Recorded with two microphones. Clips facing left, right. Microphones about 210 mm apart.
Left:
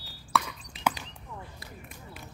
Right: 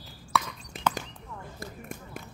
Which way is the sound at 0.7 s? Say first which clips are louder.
Right 1 dB; 45° right (ahead or behind).